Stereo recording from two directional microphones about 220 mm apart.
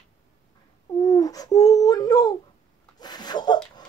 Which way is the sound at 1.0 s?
15° left (ahead or behind).